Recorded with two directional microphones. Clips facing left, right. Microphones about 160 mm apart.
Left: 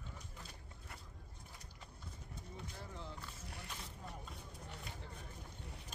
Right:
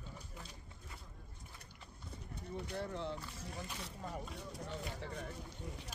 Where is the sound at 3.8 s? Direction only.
80° right.